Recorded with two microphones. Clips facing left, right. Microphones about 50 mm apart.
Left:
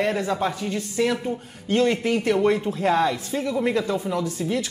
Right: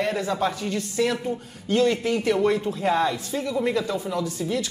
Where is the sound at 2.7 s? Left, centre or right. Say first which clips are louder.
Left 2 dB; left.